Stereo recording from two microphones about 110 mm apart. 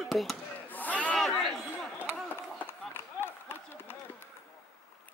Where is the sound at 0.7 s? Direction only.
15° left (ahead or behind).